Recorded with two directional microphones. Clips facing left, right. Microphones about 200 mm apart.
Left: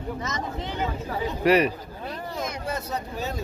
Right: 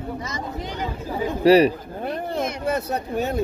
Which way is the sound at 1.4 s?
30° right (ahead or behind).